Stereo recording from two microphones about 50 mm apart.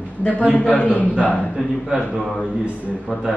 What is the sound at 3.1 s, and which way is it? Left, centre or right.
Speech, right.